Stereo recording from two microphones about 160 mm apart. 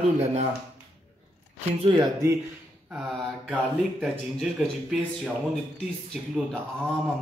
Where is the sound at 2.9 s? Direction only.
Centre (ahead or behind).